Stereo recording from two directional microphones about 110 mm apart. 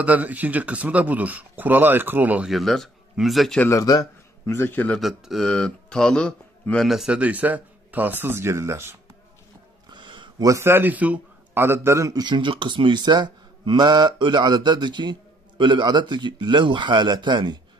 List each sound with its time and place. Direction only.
0.0 s speech: 15° right (ahead or behind)
2.5 s speech: centre (ahead or behind)
3.6 s speech: 35° left (ahead or behind)
4.5 s a man's voice: 20° left (ahead or behind)
5.0 s speech: centre (ahead or behind); by 8.9 s 25° right (ahead or behind)
9.8 s a sound: 45° right (ahead or behind)
10.4 s a man's voice: 25° right (ahead or behind)
12.2 s speech: 45° right (ahead or behind)